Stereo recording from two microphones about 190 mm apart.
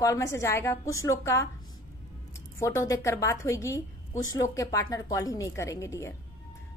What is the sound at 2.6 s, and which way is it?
A woman's voice, 15° left (ahead or behind).